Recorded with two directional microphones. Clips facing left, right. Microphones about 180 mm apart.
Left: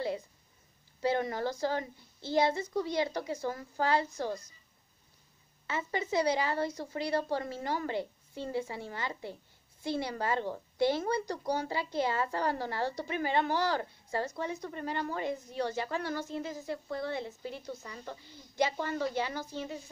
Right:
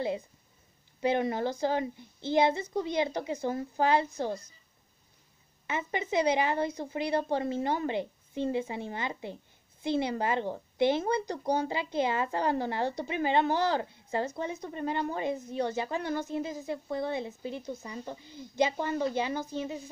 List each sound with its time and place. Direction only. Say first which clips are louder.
1.0 s a woman's voice: right 3 dB; 20° right (ahead or behind)
5.7 s a woman's voice: right 1 dB; 20° right (ahead or behind)